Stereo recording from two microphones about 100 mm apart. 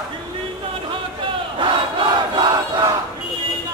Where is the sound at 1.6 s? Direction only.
55° right (ahead or behind).